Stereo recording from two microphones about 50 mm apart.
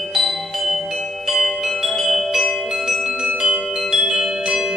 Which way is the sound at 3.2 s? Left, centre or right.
Centre.